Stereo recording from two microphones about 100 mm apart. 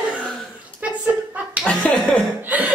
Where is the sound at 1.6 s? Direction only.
10° left (ahead or behind).